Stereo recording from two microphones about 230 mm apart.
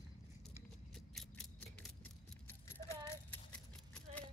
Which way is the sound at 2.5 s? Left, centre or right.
Centre.